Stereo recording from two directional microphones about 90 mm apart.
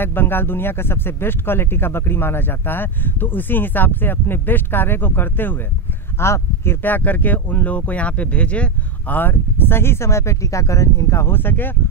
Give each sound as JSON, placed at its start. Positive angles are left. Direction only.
{"t": 0.0, "sound": "speech", "side_deg": 25}